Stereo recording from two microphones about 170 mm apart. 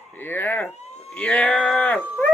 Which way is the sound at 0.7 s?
40° left (ahead or behind).